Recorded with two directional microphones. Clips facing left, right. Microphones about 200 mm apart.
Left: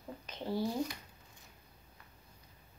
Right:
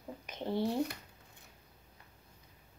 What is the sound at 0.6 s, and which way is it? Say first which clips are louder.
Speech: right 3 dB; 60° right (ahead or behind).